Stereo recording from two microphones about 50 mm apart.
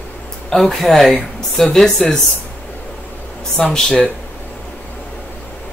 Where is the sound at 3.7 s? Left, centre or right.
Centre.